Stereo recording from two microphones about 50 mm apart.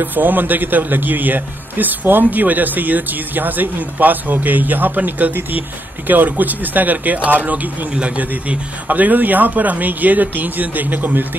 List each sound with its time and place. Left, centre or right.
0.0 s a man's voice: right